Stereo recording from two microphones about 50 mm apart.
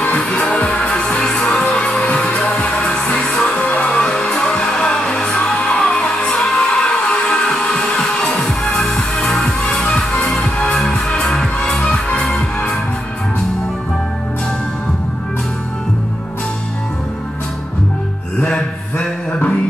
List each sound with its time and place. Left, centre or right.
0.4 s music: centre
3.9 s music: centre
5.1 s music: centre
11.9 s music: left